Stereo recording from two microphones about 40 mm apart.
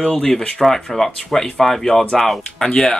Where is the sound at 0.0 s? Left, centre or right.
Centre.